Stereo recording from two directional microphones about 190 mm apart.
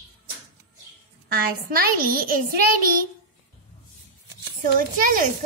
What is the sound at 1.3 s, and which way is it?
A child's voice, 50° right (ahead or behind).